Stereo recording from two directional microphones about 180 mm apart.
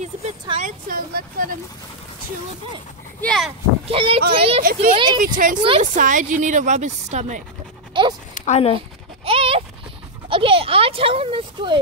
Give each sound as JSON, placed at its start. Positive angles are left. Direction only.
{"t": 0.0, "sound": "speech", "side_deg": -40}
{"t": 3.2, "sound": "speech", "side_deg": 5}
{"t": 3.9, "sound": "a child's voice", "side_deg": -30}
{"t": 5.2, "sound": "speech", "side_deg": -45}
{"t": 8.0, "sound": "speech", "side_deg": -25}
{"t": 8.4, "sound": "speech", "side_deg": 35}
{"t": 8.7, "sound": "a sound", "side_deg": -30}
{"t": 10.3, "sound": "a child's voice", "side_deg": -30}